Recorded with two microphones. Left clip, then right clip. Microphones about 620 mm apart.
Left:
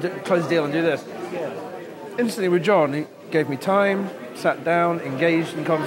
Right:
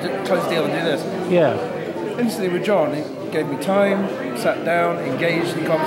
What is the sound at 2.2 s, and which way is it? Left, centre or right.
A man's voice, left.